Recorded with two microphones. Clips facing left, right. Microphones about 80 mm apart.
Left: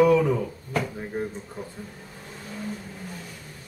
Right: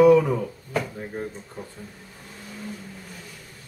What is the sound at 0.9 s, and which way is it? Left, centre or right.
Speech, centre.